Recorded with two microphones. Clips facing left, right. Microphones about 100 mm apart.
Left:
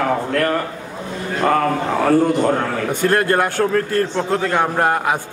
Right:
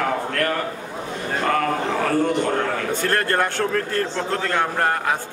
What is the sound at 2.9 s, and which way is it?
A man's voice, 15° left (ahead or behind).